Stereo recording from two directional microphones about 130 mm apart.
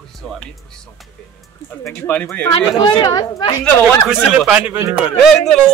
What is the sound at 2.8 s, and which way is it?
Speech, 30° left (ahead or behind).